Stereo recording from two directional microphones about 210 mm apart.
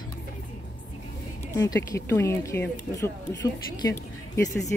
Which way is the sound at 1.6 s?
15° left (ahead or behind).